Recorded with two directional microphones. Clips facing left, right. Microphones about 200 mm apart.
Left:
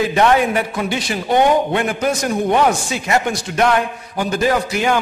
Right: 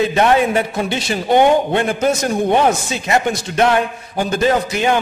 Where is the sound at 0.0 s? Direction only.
25° right (ahead or behind).